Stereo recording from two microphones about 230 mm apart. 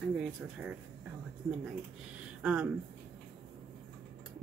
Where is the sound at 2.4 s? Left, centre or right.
Centre.